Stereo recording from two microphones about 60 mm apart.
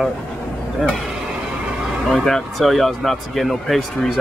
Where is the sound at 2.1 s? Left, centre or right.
Centre.